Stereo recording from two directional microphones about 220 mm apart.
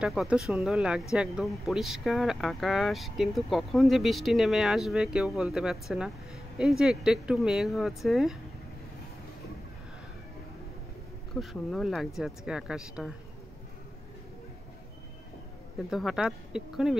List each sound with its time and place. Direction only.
0.0 s speech: 5° right (ahead or behind)
11.3 s speech: centre (ahead or behind)
15.9 s speech: centre (ahead or behind)